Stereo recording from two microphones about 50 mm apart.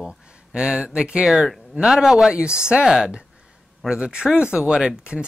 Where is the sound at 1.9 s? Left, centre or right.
Centre.